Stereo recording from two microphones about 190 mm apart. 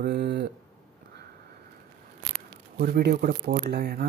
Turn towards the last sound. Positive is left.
turn(degrees=-55)  # may be behind; listen again after turning